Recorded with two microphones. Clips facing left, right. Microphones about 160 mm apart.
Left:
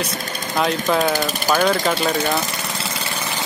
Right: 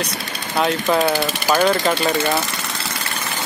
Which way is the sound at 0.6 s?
Centre (ahead or behind).